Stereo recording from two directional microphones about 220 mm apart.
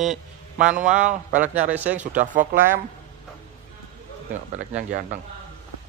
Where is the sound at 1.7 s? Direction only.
5° right (ahead or behind).